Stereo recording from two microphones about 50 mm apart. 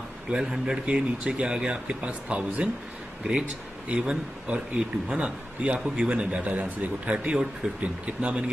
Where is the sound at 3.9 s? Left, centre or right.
Right.